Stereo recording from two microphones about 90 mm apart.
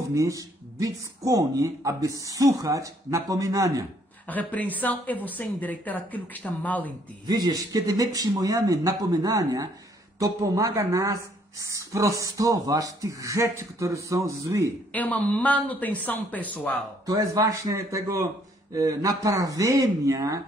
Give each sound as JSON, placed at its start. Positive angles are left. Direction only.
{"t": 0.1, "sound": "speech", "side_deg": -40}
{"t": 4.3, "sound": "speech", "side_deg": 20}
{"t": 7.2, "sound": "speech", "side_deg": -45}
{"t": 14.9, "sound": "speech", "side_deg": 15}
{"t": 17.0, "sound": "speech", "side_deg": -45}